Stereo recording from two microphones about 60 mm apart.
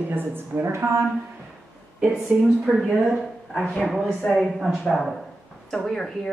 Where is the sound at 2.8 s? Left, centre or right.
Centre.